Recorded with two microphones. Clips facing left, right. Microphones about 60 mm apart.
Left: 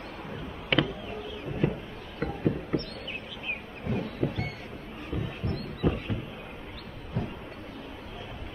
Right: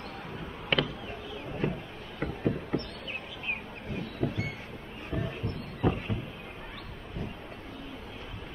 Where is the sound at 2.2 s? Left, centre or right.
Centre.